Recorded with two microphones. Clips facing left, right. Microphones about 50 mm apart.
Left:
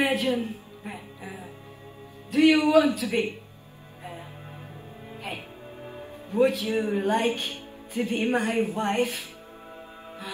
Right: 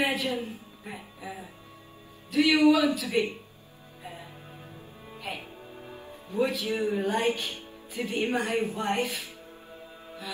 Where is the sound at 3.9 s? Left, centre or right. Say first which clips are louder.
Left 3 dB; left.